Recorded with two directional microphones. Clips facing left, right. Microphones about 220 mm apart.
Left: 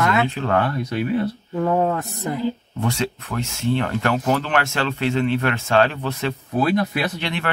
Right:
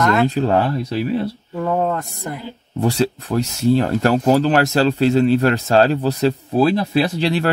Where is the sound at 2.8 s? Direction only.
35° right (ahead or behind).